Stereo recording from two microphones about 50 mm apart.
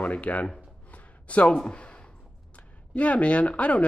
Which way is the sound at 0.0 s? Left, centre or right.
Left.